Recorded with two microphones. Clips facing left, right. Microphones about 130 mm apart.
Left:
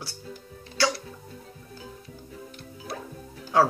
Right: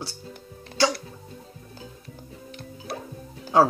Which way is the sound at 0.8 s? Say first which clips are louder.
Right 3 dB; 20° right (ahead or behind).